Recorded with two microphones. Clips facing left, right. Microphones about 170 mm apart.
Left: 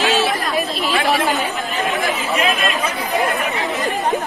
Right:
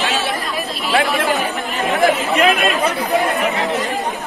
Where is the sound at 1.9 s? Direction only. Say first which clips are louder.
Right 7 dB; 65° right (ahead or behind).